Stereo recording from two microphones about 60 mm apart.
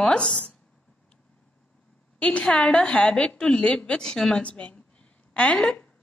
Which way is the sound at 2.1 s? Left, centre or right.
Left.